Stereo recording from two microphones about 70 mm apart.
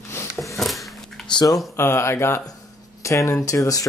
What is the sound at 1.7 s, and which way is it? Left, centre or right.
Speech, left.